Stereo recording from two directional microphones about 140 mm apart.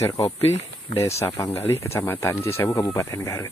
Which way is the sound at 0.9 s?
20° left (ahead or behind).